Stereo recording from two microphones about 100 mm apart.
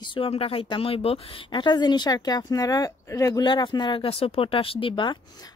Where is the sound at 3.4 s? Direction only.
50° left (ahead or behind).